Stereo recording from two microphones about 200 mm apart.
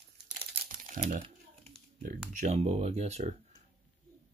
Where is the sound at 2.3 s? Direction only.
35° right (ahead or behind).